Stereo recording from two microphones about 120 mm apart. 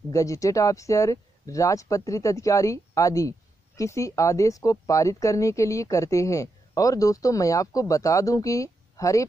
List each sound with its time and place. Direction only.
0.1 s speech: 25° left (ahead or behind)